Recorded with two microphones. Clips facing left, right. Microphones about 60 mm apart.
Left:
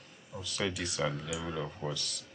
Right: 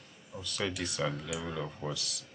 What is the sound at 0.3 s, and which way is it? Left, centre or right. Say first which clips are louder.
Speech: left 1 dB; centre.